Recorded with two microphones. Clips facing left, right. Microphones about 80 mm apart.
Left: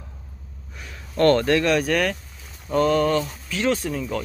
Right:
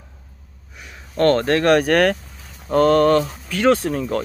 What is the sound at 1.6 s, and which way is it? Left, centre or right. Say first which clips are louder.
Speech: right 6 dB; right.